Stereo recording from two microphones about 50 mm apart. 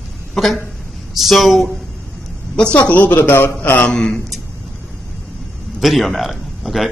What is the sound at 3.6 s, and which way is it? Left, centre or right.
Mantra, left.